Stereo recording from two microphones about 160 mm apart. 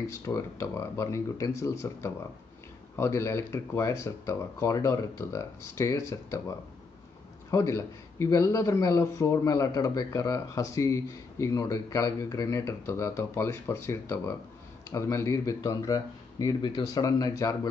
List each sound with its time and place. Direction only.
0.2 s speech: 20° left (ahead or behind)
7.5 s speech: 20° left (ahead or behind)